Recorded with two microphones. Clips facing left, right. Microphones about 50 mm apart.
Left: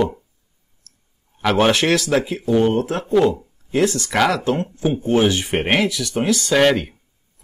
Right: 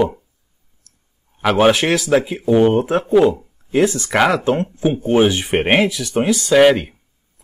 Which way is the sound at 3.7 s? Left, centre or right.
Centre.